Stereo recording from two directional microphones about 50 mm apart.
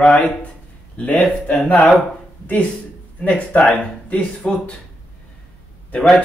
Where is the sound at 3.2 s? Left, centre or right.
Left.